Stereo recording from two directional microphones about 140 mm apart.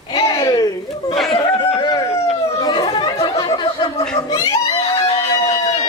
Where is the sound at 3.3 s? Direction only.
35° left (ahead or behind).